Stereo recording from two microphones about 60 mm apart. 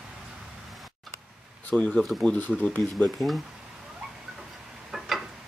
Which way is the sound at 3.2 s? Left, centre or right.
Left.